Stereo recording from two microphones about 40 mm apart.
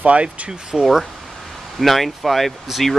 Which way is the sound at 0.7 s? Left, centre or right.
Centre.